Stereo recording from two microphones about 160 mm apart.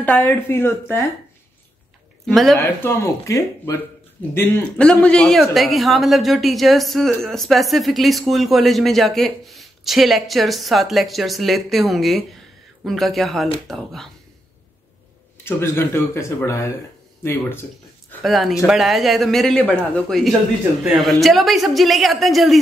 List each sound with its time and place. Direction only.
0.0 s speech: 10° left (ahead or behind)
2.2 s speech: centre (ahead or behind)
2.5 s speech: 15° left (ahead or behind); by 14.0 s centre (ahead or behind)
15.4 s speech: 15° left (ahead or behind)
18.2 s speech: centre (ahead or behind)